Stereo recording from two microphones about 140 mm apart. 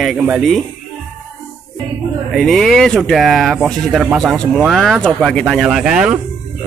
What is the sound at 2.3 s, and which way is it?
Speech, centre (ahead or behind).